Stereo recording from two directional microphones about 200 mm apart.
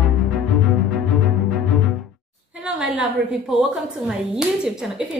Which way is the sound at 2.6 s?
5° right (ahead or behind).